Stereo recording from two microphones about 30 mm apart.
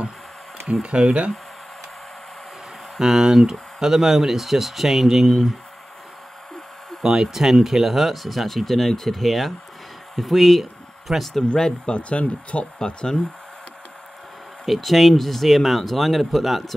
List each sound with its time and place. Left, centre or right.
0.8 s speech: right
3.0 s speech: centre
5.2 s speech: centre
7.0 s speech: centre
11.5 s speech: left
11.9 s speech: left
12.7 s speech: left
14.7 s speech: centre